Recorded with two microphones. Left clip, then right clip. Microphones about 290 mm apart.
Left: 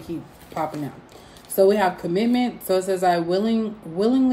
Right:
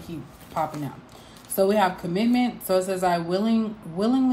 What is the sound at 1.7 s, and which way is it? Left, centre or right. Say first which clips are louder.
Speech: left 2 dB; centre.